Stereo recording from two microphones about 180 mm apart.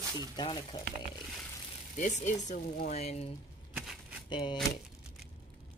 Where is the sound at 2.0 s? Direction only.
40° left (ahead or behind).